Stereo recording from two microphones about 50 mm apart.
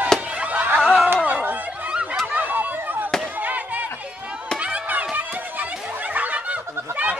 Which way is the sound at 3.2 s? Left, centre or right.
Right.